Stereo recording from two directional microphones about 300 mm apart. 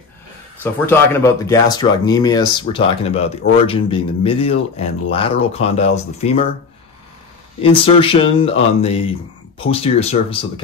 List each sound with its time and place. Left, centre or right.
0.7 s speech: centre
7.6 s speech: centre